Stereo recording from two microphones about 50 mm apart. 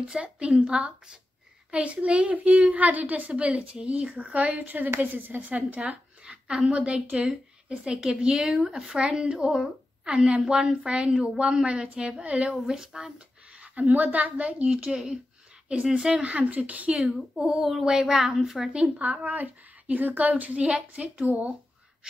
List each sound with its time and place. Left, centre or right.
0.1 s a child's voice: right
6.2 s a child's voice: centre
8.9 s a woman's voice: centre
12.6 s a woman's voice: centre
13.6 s a child's voice: right
16.3 s a child's voice: right
17.5 s a woman's voice: centre; by 21.5 s right